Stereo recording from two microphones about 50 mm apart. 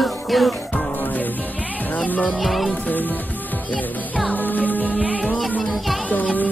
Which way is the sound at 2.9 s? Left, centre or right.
Left.